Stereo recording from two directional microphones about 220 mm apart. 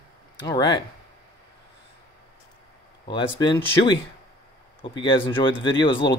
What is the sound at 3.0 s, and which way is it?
Speech, 20° left (ahead or behind).